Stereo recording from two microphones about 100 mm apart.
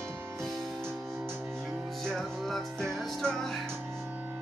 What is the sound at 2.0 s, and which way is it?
Speech, centre (ahead or behind).